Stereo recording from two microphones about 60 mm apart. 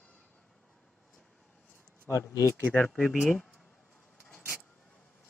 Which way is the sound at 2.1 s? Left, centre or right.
Left.